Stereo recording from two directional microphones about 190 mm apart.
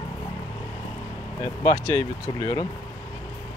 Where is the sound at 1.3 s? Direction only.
20° left (ahead or behind).